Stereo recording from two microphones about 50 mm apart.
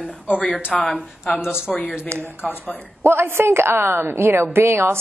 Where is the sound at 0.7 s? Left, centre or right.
Left.